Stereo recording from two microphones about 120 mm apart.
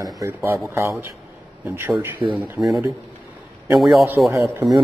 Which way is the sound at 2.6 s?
Centre (ahead or behind).